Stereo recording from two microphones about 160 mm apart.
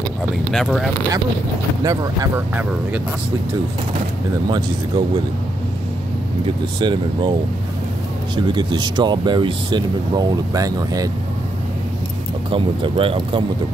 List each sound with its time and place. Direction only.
0.5 s speech: centre (ahead or behind)
1.8 s speech: 20° right (ahead or behind)
4.5 s speech: 25° right (ahead or behind)
6.4 s speech: 30° right (ahead or behind)
8.4 s speech: 30° right (ahead or behind)
12.4 s speech: 30° right (ahead or behind)